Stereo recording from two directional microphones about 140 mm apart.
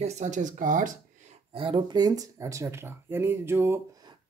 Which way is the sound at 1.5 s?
35° right (ahead or behind).